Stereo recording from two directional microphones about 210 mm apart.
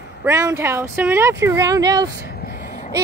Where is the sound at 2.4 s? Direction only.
45° left (ahead or behind).